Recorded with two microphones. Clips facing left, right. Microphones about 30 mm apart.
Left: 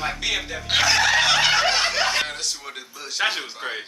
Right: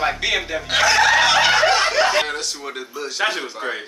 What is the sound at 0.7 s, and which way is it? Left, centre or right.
Chicken, centre.